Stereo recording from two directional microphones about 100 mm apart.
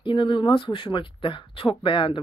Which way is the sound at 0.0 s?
55° left (ahead or behind).